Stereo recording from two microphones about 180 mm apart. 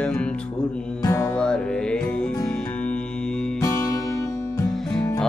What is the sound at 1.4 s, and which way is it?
Music, 5° left (ahead or behind).